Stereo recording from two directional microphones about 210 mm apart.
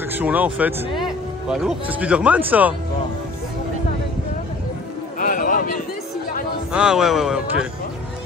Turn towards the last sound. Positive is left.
turn(degrees=0)  # may be behind; listen again after turning